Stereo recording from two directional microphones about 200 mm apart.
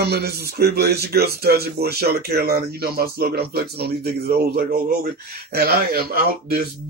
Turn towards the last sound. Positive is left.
turn(degrees=-50)  # may be behind; listen again after turning